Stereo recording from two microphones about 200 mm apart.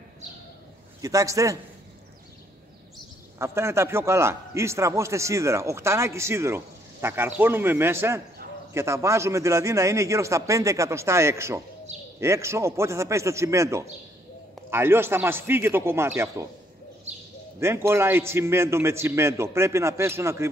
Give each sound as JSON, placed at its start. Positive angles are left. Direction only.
{"t": 1.0, "sound": "a man's voice", "side_deg": -15}
{"t": 3.3, "sound": "a man's voice", "side_deg": -15}
{"t": 17.6, "sound": "a man's voice", "side_deg": -15}